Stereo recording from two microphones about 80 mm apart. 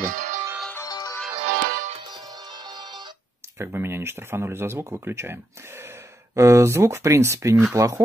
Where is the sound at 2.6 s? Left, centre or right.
Right.